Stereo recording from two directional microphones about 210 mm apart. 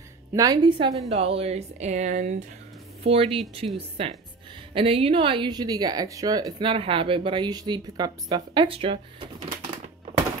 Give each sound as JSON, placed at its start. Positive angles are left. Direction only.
{"t": 0.3, "sound": "a woman's voice", "side_deg": -15}